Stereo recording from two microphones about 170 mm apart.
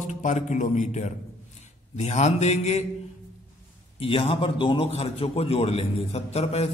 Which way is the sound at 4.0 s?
30° left (ahead or behind).